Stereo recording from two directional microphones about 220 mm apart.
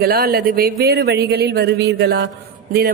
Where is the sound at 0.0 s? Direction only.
40° right (ahead or behind).